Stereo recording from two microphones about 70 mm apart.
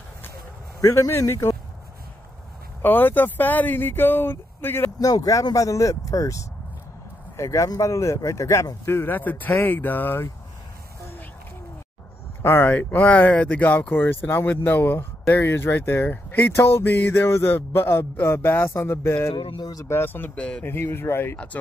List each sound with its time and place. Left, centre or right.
0.7 s speech: left
2.8 s speech: left
5.0 s speech: left
9.1 s speech: left
12.4 s speech: left
12.7 s speech: left
20.3 s speech: centre
20.6 s speech: left